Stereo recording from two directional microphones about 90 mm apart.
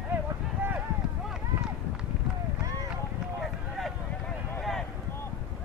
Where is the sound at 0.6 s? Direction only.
25° right (ahead or behind).